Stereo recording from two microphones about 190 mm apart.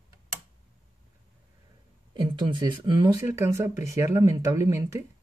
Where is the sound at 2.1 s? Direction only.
25° right (ahead or behind).